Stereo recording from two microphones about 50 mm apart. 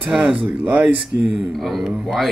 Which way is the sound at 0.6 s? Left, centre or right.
Right.